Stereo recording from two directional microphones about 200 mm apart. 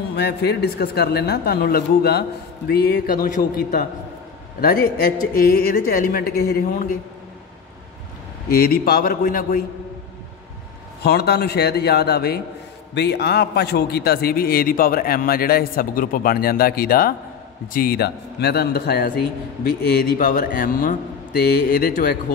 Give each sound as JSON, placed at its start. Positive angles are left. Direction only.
{"t": 0.1, "sound": "a man's voice", "side_deg": 55}
{"t": 8.5, "sound": "a man's voice", "side_deg": 50}
{"t": 11.0, "sound": "a man's voice", "side_deg": 55}